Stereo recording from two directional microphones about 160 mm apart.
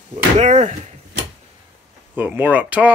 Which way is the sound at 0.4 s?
45° right (ahead or behind).